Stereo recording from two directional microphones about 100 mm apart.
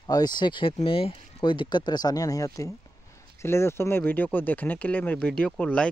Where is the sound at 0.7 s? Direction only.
75° left (ahead or behind).